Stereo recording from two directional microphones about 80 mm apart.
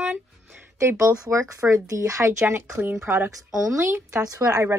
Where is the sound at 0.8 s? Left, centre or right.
Right.